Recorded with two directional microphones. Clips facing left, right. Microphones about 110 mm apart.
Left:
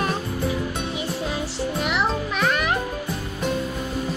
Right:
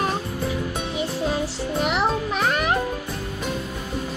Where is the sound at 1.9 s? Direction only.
35° right (ahead or behind).